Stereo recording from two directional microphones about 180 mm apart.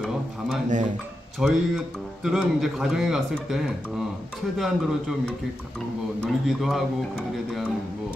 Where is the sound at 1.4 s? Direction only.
5° right (ahead or behind).